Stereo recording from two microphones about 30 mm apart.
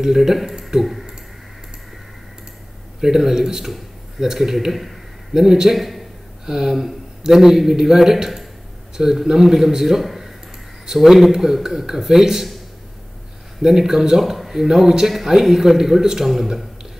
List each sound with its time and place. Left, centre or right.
0.0 s a man's voice: centre
0.6 s a sound: centre
3.0 s a man's voice: centre
5.8 s a man's voice: centre
6.4 s a man's voice: centre
10.0 s a sound: centre
10.9 s a man's voice: centre
13.6 s a man's voice: centre
14.3 s a man's voice: centre